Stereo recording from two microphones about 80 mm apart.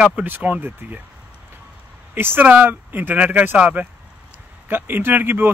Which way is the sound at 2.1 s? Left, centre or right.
Right.